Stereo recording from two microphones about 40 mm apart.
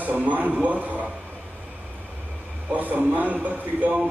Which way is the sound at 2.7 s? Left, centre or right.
Right.